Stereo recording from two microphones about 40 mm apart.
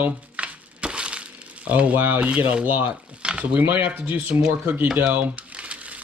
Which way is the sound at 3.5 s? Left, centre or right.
Right.